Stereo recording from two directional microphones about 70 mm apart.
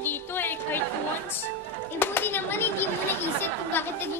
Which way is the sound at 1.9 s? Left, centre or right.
Left.